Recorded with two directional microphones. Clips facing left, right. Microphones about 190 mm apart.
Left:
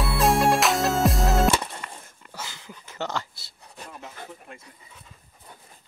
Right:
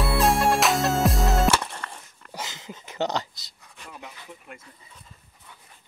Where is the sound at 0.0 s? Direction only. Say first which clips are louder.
Even; centre (ahead or behind).